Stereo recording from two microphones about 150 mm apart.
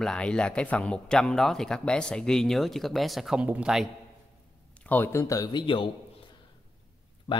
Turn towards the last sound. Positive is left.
turn(degrees=35)  # may be behind; listen again after turning